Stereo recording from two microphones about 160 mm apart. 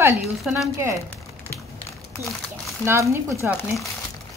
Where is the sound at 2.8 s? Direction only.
15° right (ahead or behind).